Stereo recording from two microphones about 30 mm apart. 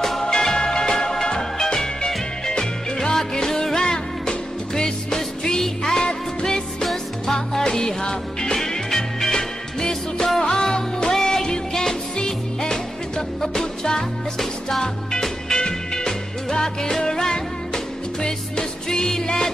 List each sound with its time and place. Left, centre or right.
0.2 s music: left
3.2 s music: centre
7.6 s music: left
10.4 s music: left; by 14.9 s centre
15.5 s music: left